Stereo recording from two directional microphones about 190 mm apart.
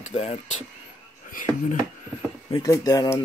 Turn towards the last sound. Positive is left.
turn(degrees=20)  # may be behind; listen again after turning